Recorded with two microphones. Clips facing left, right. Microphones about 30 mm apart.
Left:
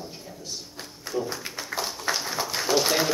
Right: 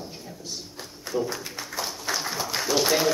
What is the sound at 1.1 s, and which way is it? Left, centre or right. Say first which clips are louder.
Speech: right 2 dB; centre.